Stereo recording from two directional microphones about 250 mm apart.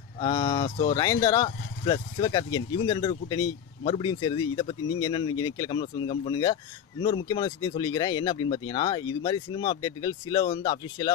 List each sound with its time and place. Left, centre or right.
0.2 s speech: centre